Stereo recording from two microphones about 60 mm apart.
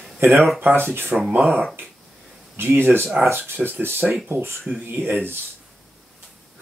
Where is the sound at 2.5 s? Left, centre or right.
Right.